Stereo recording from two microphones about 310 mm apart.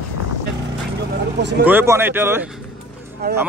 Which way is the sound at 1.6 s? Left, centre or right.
Centre.